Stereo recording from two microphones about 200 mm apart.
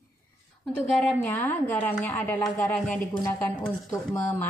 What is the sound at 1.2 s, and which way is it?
A woman's voice, 15° left (ahead or behind).